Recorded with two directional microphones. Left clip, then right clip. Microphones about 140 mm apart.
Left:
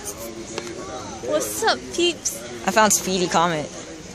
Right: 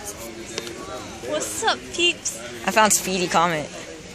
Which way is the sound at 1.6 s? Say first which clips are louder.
Right 2 dB; 55° left (ahead or behind).